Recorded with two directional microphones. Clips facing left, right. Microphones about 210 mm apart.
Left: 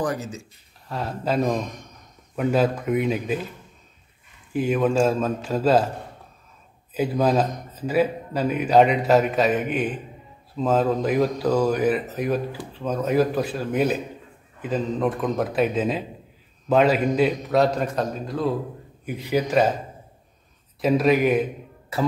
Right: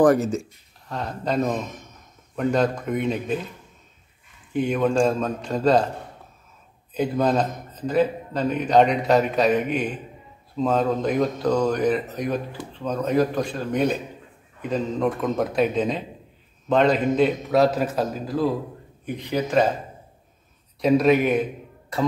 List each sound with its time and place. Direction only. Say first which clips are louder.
0.0 s speech: right 10 dB; 50° right (ahead or behind)
0.8 s speech: left 1 dB; 5° left (ahead or behind)
4.5 s speech: even; centre (ahead or behind)
6.9 s speech: even; 5° left (ahead or behind)
20.8 s a man's voice: right 1 dB; centre (ahead or behind)